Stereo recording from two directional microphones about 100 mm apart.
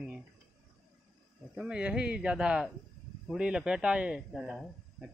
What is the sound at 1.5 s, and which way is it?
Speech, 10° right (ahead or behind).